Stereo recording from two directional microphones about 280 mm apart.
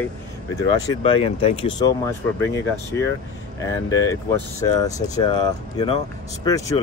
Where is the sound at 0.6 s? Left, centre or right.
Centre.